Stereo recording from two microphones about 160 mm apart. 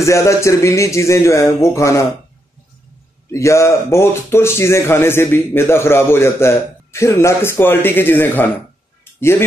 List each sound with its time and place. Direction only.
0.0 s speech: 20° left (ahead or behind)
3.3 s speech: 20° left (ahead or behind)